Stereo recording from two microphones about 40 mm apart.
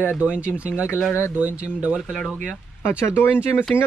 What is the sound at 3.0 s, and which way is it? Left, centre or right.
Speech, left.